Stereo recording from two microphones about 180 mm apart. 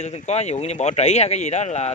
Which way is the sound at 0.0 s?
40° left (ahead or behind).